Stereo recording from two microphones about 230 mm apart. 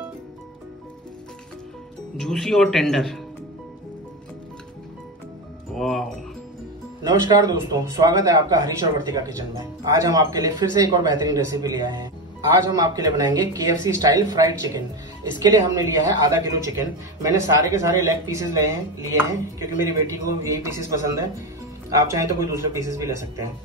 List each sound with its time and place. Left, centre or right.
2.1 s speech: centre
5.8 s music: centre
7.0 s speech: centre